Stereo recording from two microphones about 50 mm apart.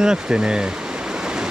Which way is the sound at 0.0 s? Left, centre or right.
Centre.